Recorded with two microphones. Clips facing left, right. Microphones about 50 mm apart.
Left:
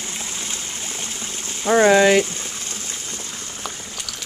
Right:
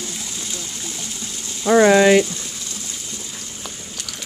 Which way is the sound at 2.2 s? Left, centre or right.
Left.